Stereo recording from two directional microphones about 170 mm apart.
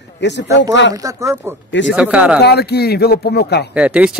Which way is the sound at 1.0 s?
20° right (ahead or behind).